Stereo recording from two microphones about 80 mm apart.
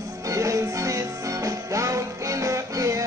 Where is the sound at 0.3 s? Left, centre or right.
Right.